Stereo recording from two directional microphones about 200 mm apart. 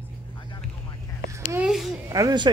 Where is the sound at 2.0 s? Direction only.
15° right (ahead or behind).